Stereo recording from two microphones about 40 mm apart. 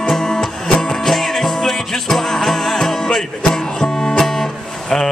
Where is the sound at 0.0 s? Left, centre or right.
Centre.